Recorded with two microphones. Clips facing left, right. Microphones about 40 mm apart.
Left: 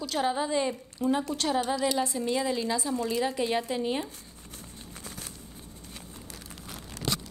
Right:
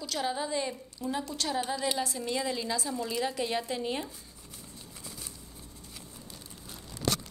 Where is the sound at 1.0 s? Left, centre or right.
Left.